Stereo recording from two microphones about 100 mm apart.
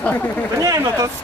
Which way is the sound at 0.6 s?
35° right (ahead or behind).